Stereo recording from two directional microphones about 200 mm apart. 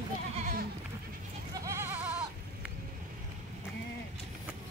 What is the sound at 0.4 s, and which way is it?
Goat, 40° right (ahead or behind).